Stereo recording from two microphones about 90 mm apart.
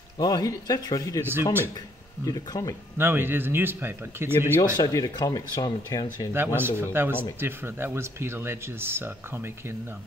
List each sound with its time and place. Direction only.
0.2 s speech: 45° left (ahead or behind)
2.2 s speech: 45° left (ahead or behind)
3.0 s speech: 25° right (ahead or behind)
4.7 s speech: 45° left (ahead or behind)
6.3 s speech: 25° right (ahead or behind)